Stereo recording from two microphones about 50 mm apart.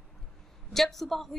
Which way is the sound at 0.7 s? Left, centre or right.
Centre.